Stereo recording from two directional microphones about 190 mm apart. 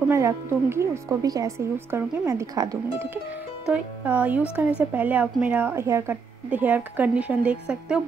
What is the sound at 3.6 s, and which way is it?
Speech, 5° right (ahead or behind).